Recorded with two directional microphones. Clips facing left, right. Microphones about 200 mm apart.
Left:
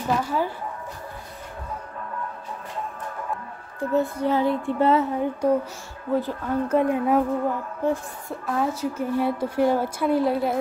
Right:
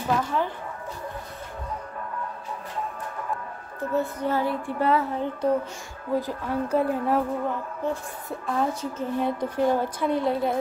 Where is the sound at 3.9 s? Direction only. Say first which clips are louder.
Left 3 dB; 15° left (ahead or behind).